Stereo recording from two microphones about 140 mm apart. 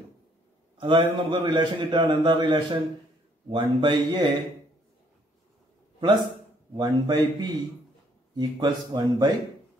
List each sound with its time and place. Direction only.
0.7 s a man's voice: 35° right (ahead or behind)
5.9 s a man's voice: 35° right (ahead or behind)